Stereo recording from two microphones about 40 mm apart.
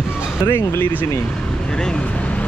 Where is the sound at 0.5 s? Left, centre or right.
Left.